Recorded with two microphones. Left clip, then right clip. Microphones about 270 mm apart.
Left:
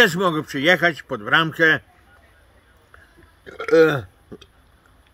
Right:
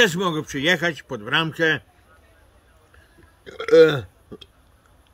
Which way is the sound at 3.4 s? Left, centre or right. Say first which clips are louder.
Right 1 dB; centre.